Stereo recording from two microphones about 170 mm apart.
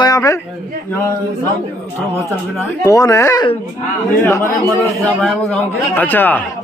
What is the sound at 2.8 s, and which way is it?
A man's voice, 20° left (ahead or behind).